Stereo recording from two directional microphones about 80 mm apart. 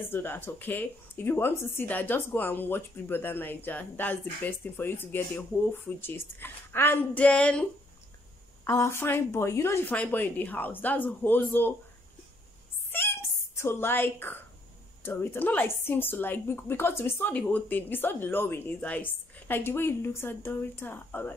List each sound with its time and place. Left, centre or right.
0.1 s speech: left
8.6 s a woman's voice: left
9.8 s speech: left
12.9 s a sound: left
13.6 s speech: left
17.3 s speech: centre